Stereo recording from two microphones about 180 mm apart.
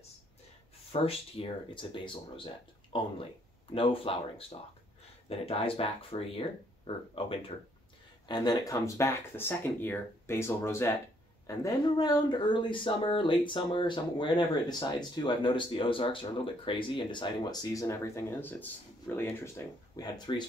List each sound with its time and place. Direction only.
0.9 s speech: 30° left (ahead or behind)